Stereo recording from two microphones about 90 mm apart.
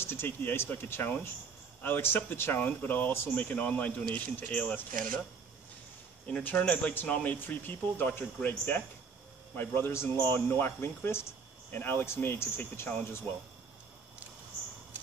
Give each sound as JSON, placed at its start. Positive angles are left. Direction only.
{"t": 0.0, "sound": "speech", "side_deg": 25}
{"t": 6.2, "sound": "speech", "side_deg": 15}